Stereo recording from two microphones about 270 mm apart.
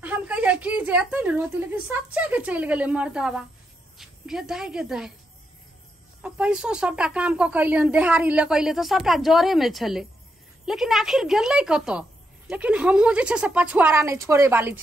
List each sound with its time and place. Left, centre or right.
0.0 s a woman's voice: centre
6.2 s a woman's voice: centre